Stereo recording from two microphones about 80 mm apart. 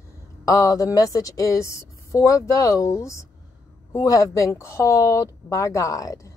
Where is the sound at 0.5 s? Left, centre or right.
Left.